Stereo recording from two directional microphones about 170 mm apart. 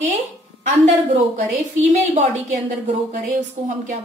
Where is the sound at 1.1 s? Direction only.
45° right (ahead or behind).